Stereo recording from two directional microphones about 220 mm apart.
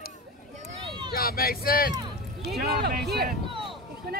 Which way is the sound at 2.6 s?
45° right (ahead or behind).